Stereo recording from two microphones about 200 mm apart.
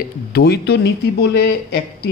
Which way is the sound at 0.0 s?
55° left (ahead or behind).